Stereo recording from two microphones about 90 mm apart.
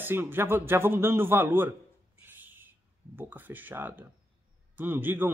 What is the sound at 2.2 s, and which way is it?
Owl, 20° right (ahead or behind).